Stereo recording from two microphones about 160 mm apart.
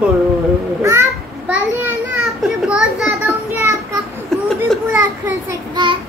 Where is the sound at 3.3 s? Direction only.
20° right (ahead or behind).